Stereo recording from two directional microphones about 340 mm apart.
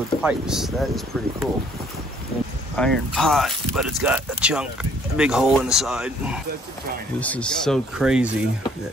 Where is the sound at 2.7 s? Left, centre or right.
Centre.